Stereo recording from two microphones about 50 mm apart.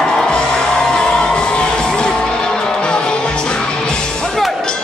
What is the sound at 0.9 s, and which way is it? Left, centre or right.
Music, centre.